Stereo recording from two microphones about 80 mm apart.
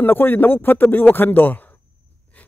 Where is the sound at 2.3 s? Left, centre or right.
Centre.